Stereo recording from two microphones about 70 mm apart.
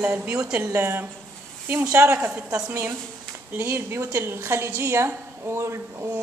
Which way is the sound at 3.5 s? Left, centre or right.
Right.